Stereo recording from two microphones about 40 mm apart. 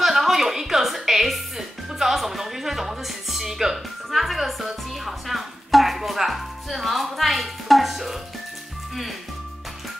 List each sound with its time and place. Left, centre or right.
0.0 s music: centre